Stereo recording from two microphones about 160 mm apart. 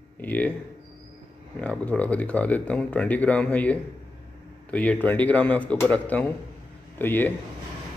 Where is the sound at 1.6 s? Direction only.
10° left (ahead or behind).